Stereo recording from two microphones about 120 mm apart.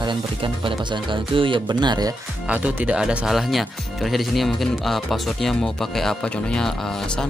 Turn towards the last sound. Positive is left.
turn(degrees=5)  # may be behind; listen again after turning